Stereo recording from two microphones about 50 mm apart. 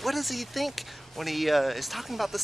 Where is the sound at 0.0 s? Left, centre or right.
Centre.